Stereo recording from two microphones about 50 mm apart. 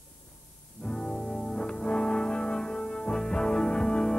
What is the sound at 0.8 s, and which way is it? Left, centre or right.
Music, centre.